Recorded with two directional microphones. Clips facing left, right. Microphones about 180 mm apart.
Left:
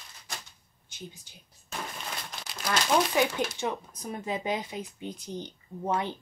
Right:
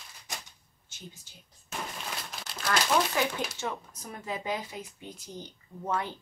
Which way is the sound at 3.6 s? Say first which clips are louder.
Left 4 dB; 20° left (ahead or behind).